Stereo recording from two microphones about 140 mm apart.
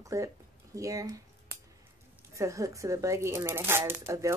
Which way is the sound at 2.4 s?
20° right (ahead or behind).